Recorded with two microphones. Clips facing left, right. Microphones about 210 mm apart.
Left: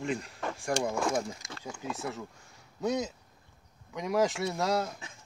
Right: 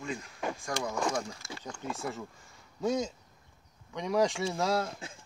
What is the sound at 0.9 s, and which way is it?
Speech, 5° left (ahead or behind).